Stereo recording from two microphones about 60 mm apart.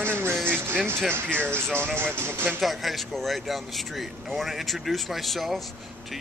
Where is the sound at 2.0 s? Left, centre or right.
Right.